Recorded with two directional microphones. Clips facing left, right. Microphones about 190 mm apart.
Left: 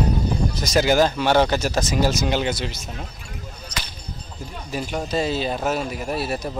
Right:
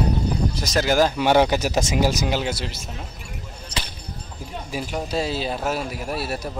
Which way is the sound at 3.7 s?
30° right (ahead or behind).